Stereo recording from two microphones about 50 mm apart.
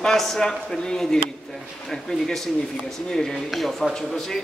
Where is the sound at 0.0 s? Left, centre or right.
Centre.